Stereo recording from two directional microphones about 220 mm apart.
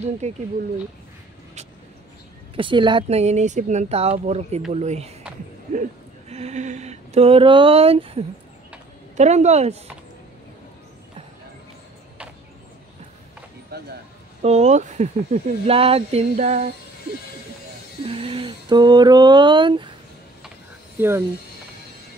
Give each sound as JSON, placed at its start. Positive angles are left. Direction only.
{"t": 0.2, "sound": "a woman's voice", "side_deg": -30}
{"t": 2.5, "sound": "a woman's voice", "side_deg": -20}
{"t": 13.7, "sound": "a sound", "side_deg": -45}
{"t": 14.4, "sound": "speech", "side_deg": -30}
{"t": 18.0, "sound": "speech", "side_deg": -25}